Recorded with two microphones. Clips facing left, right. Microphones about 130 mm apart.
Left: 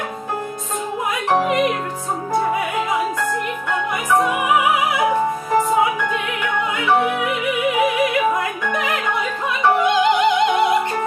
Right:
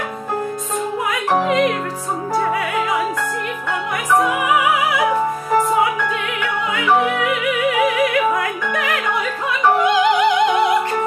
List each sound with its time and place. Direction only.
1.4 s music: 20° left (ahead or behind)
4.5 s music: 20° left (ahead or behind)
6.4 s music: 15° left (ahead or behind)